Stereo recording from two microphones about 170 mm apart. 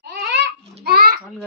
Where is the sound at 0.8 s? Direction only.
60° right (ahead or behind).